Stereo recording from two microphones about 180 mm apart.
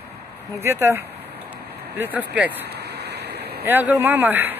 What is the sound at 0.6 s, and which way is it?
Speech, 15° right (ahead or behind).